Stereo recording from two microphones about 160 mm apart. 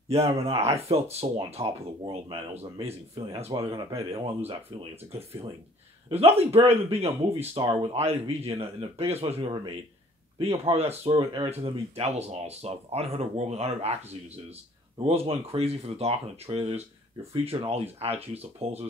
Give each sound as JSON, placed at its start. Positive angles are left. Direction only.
{"t": 0.1, "sound": "speech", "side_deg": -40}
{"t": 6.0, "sound": "speech", "side_deg": -40}
{"t": 15.0, "sound": "speech", "side_deg": -40}